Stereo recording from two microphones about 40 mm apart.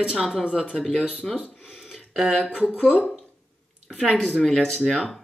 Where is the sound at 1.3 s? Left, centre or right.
Centre.